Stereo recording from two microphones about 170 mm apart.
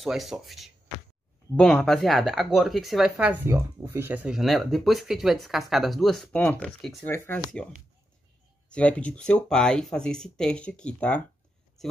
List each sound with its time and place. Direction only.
0.0 s speech: centre (ahead or behind)
7.0 s speech: 15° left (ahead or behind)
8.7 s speech: 5° left (ahead or behind)